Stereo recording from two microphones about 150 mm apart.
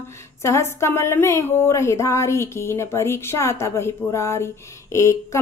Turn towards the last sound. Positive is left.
turn(degrees=20)  # may be behind; listen again after turning